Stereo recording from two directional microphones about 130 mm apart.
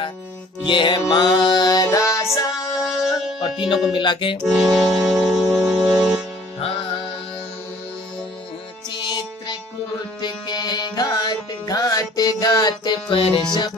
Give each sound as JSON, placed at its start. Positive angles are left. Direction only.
{"t": 0.7, "sound": "music", "side_deg": 40}
{"t": 2.8, "sound": "music", "side_deg": -5}
{"t": 3.3, "sound": "music", "side_deg": 35}
{"t": 3.9, "sound": "speech", "side_deg": 35}
{"t": 4.5, "sound": "music", "side_deg": 0}
{"t": 9.0, "sound": "music", "side_deg": 35}